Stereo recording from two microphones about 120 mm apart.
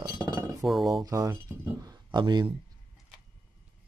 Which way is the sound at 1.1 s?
30° right (ahead or behind).